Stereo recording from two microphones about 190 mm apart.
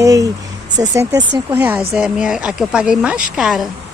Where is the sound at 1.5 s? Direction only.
10° right (ahead or behind).